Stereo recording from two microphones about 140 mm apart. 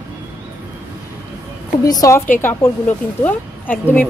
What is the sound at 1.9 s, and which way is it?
Speech, 25° left (ahead or behind).